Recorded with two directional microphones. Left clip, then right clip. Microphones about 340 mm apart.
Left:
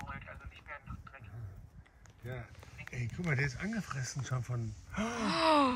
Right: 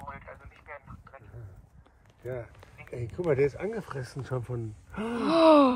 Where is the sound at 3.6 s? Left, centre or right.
Centre.